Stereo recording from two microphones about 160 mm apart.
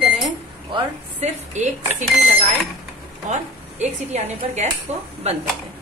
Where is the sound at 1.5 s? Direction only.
50° right (ahead or behind).